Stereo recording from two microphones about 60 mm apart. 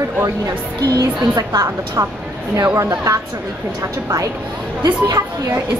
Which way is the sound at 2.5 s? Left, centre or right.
Right.